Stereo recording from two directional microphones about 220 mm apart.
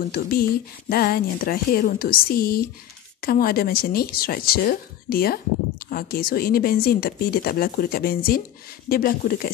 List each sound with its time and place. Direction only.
0.1 s speech: 40° left (ahead or behind)